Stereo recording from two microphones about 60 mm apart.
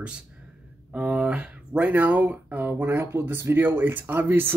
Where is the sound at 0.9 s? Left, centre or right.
Centre; by 4.5 s right.